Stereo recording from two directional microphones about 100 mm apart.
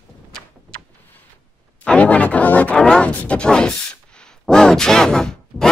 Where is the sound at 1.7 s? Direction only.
15° left (ahead or behind).